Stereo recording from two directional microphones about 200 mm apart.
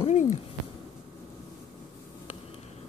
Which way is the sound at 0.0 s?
35° left (ahead or behind).